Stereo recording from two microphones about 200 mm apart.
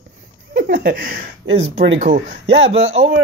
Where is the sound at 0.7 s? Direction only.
45° right (ahead or behind).